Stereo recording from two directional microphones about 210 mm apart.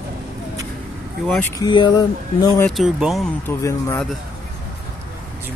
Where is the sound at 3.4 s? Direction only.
10° left (ahead or behind).